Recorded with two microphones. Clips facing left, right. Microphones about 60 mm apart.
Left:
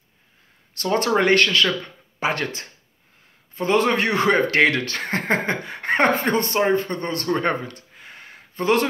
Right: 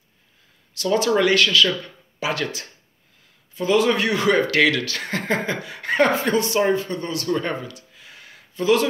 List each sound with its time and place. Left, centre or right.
0.7 s speech: left